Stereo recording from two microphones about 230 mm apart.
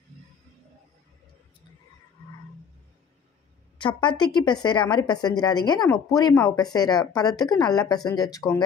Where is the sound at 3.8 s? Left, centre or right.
Left.